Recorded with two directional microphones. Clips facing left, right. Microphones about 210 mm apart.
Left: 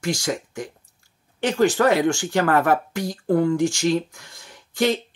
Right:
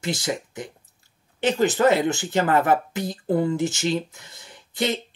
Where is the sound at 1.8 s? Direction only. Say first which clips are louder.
Even; 20° right (ahead or behind).